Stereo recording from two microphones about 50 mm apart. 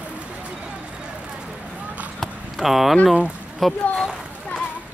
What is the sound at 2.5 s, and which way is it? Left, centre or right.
Speech, centre.